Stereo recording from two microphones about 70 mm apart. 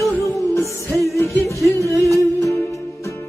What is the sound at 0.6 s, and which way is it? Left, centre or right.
Music, left.